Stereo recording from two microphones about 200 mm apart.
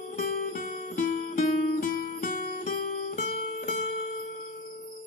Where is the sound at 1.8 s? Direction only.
45° left (ahead or behind).